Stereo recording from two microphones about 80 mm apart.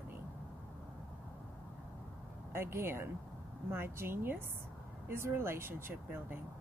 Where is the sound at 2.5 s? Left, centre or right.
Right.